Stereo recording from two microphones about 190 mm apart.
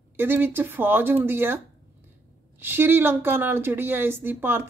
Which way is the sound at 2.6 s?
10° right (ahead or behind).